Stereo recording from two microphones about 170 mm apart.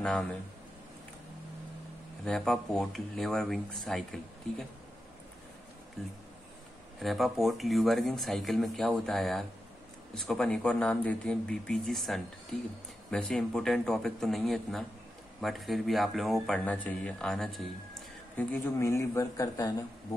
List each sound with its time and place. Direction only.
0.0 s speech: 5° left (ahead or behind)
2.2 s speech: centre (ahead or behind)
7.0 s speech: centre (ahead or behind)
18.4 s a man's voice: 15° left (ahead or behind)